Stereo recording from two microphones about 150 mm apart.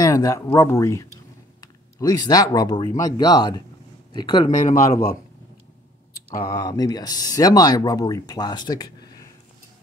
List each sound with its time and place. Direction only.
0.0 s speech: 25° left (ahead or behind)
4.5 s speech: 55° left (ahead or behind)
6.5 s speech: 25° left (ahead or behind)